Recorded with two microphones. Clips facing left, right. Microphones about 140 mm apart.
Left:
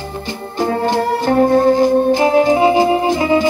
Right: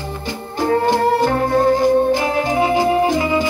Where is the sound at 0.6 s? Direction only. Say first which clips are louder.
Right 1 dB; 25° left (ahead or behind).